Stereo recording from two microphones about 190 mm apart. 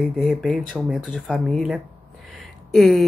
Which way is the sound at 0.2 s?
Centre (ahead or behind).